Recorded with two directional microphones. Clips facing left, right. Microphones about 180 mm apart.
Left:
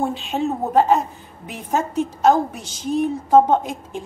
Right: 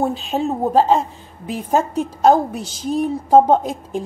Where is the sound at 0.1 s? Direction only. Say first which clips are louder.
Right 2 dB; 30° right (ahead or behind).